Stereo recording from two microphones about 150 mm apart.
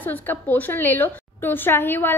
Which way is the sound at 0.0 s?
10° left (ahead or behind).